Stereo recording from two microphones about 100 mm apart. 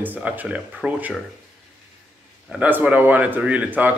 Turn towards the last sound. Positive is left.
turn(degrees=-15)  # may be behind; listen again after turning